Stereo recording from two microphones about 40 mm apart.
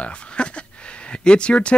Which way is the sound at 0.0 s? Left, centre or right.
Left.